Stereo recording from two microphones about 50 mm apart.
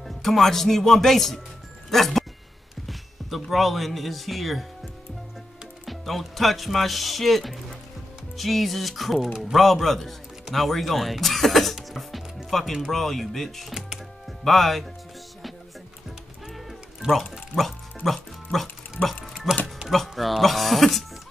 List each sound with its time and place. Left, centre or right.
0.0 s speech: centre
1.9 s music: centre
2.9 s a man's voice: centre
5.9 s speech: centre
12.4 s music: centre
12.9 s speech: centre
16.5 s cat: centre
17.6 s music: centre
19.9 s a sound: centre